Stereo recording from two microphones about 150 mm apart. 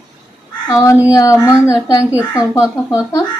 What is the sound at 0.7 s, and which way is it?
Speech, 25° left (ahead or behind).